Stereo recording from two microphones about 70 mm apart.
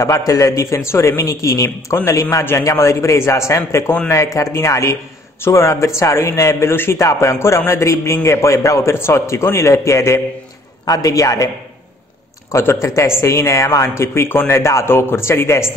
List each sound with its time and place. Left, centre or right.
0.3 s a man's voice: left
7.0 s a man's voice: left
10.9 s a man's voice: left